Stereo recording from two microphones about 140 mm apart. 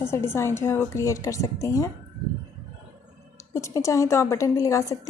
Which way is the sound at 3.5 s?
20° left (ahead or behind).